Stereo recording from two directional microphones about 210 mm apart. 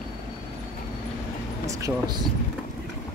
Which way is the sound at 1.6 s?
15° right (ahead or behind).